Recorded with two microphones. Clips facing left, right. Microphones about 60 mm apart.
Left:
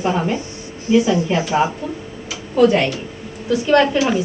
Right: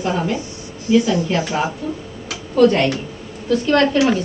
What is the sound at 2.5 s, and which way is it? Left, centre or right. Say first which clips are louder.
A woman's voice: even; centre.